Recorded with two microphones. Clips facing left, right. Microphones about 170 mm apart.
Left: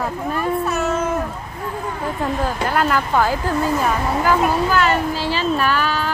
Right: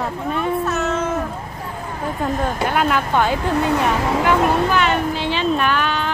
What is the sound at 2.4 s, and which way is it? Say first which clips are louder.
Speech: even; centre (ahead or behind).